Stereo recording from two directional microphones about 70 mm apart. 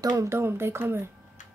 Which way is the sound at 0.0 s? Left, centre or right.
Right.